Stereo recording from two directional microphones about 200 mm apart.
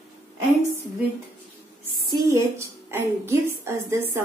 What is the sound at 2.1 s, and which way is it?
A woman's voice, 15° right (ahead or behind).